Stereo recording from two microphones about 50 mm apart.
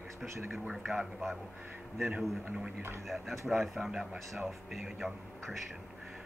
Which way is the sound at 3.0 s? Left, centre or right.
Centre.